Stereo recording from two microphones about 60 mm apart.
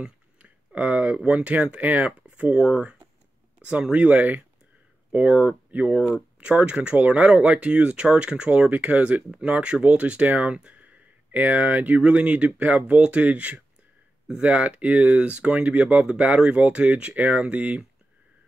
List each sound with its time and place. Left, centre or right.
0.0 s speech: right
5.9 s speech: centre
6.4 s speech: right